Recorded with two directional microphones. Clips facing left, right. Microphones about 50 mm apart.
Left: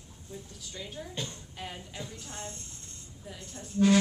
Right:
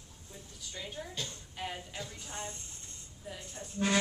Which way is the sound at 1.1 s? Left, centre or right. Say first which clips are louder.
Left 3 dB; left.